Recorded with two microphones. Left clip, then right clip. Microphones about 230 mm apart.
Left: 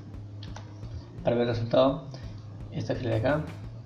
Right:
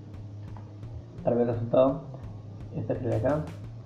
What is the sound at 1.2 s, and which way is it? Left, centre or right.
Speech, left.